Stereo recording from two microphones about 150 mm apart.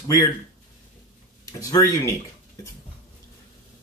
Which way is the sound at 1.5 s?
20° left (ahead or behind).